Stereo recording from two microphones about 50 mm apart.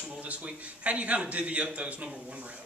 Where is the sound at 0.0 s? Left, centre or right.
Right.